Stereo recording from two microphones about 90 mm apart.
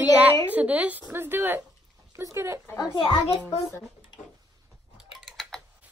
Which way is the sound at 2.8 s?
50° left (ahead or behind).